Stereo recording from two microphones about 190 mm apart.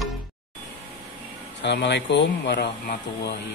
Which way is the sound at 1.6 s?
65° left (ahead or behind).